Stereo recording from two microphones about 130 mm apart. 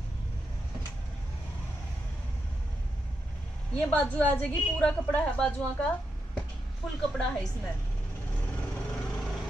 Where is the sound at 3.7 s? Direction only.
10° left (ahead or behind).